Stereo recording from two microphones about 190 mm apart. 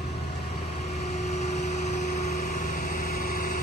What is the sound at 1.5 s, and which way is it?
Vehicle, 35° left (ahead or behind).